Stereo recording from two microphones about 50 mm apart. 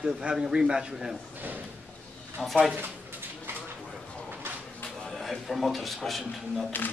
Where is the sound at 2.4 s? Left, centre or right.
Centre.